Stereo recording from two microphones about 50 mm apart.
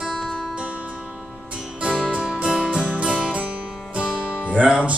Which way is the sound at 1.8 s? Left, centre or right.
Right.